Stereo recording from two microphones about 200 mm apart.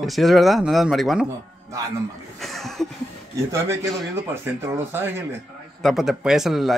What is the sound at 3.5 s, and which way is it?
A man's voice, 15° right (ahead or behind).